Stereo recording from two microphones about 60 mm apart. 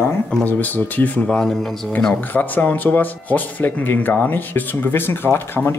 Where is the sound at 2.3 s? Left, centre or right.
Left.